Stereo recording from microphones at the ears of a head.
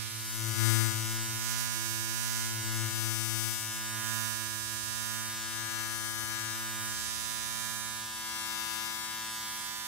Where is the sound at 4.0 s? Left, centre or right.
Right.